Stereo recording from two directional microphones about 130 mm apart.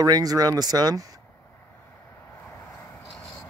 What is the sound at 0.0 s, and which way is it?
Speech, 30° right (ahead or behind).